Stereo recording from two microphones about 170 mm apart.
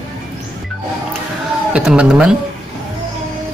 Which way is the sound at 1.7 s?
5° right (ahead or behind).